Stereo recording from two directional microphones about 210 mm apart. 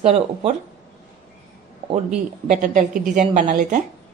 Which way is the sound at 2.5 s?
40° right (ahead or behind).